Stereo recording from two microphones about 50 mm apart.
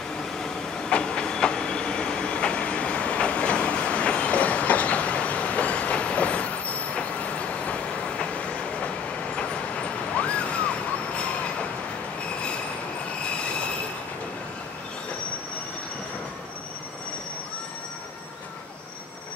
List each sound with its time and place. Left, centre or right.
0.2 s train: centre